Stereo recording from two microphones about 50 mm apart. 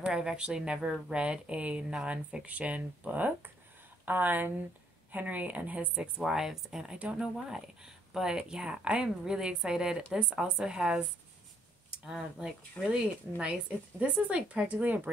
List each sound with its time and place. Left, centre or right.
0.0 s speech: centre; by 5.9 s right
5.9 s speech: centre
12.1 s speech: centre; by 15.0 s right